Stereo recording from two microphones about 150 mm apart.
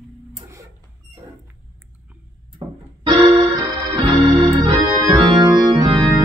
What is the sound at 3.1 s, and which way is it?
Keyboard, 30° right (ahead or behind).